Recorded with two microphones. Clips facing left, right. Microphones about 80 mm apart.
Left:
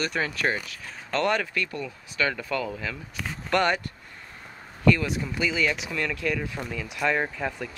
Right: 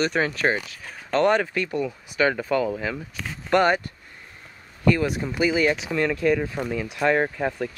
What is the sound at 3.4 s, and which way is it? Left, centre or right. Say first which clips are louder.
Speech: right 4 dB; centre.